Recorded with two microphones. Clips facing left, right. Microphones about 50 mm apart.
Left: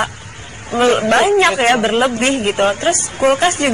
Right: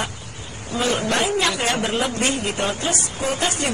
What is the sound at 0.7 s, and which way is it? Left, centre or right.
Speech, left.